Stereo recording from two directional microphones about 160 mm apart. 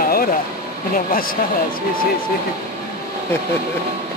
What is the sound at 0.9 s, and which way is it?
Speech, 60° left (ahead or behind).